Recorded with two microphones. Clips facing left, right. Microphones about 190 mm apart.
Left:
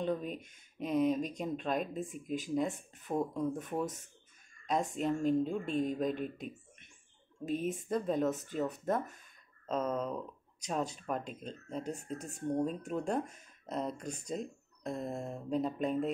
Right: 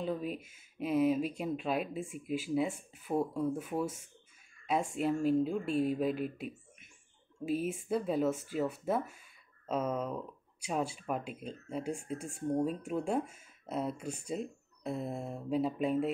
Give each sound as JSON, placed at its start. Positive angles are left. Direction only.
{"t": 0.0, "sound": "speech", "side_deg": -5}